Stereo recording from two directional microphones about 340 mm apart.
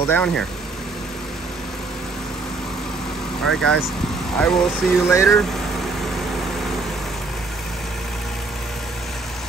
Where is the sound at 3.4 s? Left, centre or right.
Centre.